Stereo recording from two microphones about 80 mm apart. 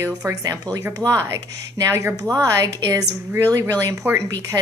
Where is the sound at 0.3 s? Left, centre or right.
Right.